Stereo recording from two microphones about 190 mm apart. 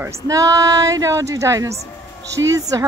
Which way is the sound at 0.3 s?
20° right (ahead or behind).